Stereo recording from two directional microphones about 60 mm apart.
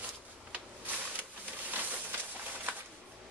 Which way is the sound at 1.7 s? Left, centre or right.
Right.